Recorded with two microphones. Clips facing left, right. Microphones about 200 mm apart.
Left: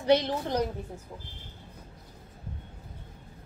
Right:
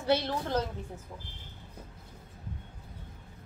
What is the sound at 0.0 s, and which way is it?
Speech, 15° left (ahead or behind).